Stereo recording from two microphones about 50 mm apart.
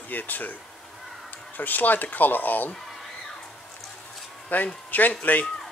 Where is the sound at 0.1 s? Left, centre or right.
Left.